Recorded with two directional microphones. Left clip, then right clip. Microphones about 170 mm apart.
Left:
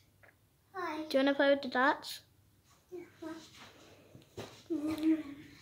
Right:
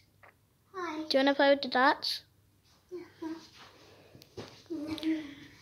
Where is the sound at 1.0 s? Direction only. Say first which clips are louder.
Right 4 dB; 10° right (ahead or behind).